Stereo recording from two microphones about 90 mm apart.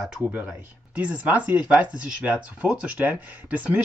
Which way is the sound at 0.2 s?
15° right (ahead or behind).